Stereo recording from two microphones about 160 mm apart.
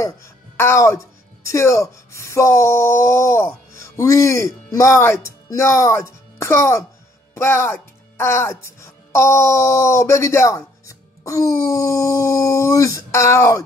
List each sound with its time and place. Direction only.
0.6 s speech: 15° left (ahead or behind)